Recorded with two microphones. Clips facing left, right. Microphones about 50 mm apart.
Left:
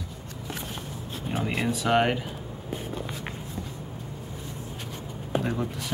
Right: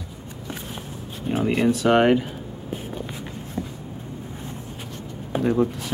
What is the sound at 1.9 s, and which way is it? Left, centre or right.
Speech, centre.